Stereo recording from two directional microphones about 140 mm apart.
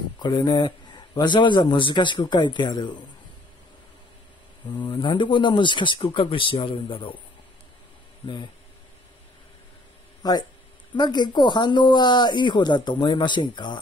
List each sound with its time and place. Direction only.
0.2 s a man's voice: 35° left (ahead or behind)
4.7 s a man's voice: 35° left (ahead or behind)
10.2 s a man's voice: 30° left (ahead or behind)